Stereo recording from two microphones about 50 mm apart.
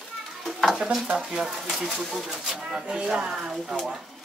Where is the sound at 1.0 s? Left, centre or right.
Centre.